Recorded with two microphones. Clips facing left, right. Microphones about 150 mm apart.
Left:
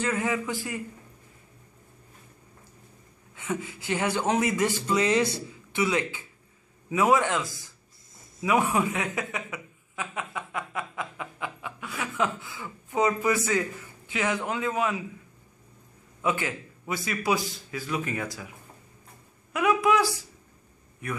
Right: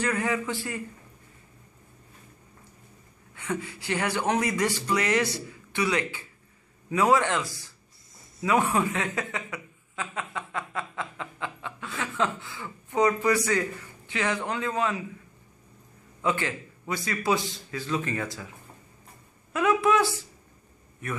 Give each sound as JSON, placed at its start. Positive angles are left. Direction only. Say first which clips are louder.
{"t": 0.2, "sound": "a man's voice", "louder": "even", "side_deg": 20}
{"t": 3.3, "sound": "a man's voice", "louder": "even", "side_deg": 20}
{"t": 8.4, "sound": "a sound", "louder": "even", "side_deg": 10}
{"t": 13.4, "sound": "a man's voice", "louder": "even", "side_deg": 15}
{"t": 16.2, "sound": "a man's voice", "louder": "even", "side_deg": 15}
{"t": 19.5, "sound": "a man's voice", "louder": "even", "side_deg": 10}